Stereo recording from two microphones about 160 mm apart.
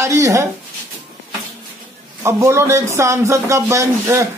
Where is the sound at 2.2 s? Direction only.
15° right (ahead or behind).